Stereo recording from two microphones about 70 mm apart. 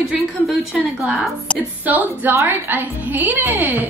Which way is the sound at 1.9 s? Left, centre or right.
Right.